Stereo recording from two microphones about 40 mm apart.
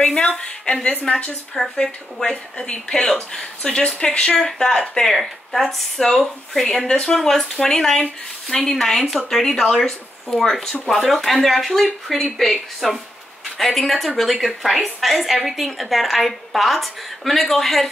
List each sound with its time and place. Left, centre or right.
0.0 s a woman's voice: centre
2.2 s a woman's voice: left; by 17.8 s centre